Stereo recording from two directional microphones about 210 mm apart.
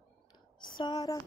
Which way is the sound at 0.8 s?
20° left (ahead or behind).